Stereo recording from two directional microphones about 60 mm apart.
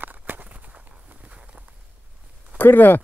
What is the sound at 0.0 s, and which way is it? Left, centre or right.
Walk, right.